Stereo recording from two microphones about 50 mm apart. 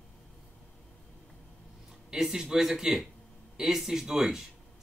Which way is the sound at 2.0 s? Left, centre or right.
Centre.